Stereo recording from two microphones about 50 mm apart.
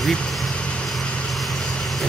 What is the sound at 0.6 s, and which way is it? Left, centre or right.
Vehicle, left.